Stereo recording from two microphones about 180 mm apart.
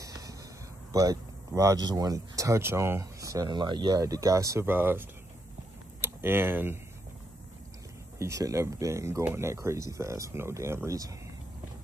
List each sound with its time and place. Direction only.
0.0 s a sound: 20° right (ahead or behind)
0.9 s speech: 20° right (ahead or behind)
8.2 s speech: 15° right (ahead or behind)